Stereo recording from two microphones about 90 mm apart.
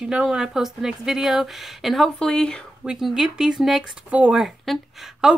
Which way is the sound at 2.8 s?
5° right (ahead or behind).